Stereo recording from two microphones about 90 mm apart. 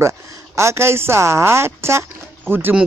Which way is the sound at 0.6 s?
30° right (ahead or behind).